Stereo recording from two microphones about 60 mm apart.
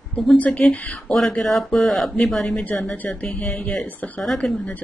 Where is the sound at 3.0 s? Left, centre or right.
Left.